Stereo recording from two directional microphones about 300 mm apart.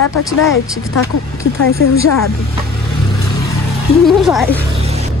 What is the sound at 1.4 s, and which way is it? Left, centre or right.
Speech, left.